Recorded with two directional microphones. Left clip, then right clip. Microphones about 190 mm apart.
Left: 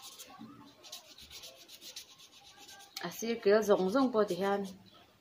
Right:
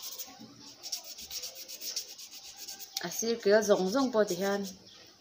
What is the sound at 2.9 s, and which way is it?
Speech, 5° right (ahead or behind).